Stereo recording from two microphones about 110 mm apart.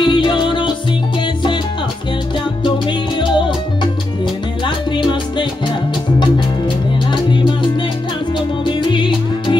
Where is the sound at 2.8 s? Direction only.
45° left (ahead or behind).